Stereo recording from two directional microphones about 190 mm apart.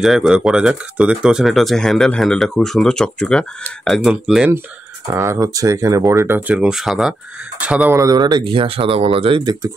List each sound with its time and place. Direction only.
0.0 s speech: 5° right (ahead or behind)
5.1 s speech: 15° right (ahead or behind)
8.0 s speech: 20° right (ahead or behind)